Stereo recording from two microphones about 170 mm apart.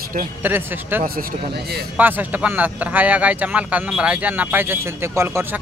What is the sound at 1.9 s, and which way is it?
Speech, 10° right (ahead or behind).